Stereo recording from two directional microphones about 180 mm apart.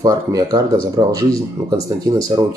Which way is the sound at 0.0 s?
20° right (ahead or behind).